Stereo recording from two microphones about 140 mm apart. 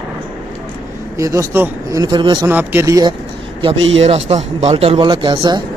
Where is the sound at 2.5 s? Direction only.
15° right (ahead or behind).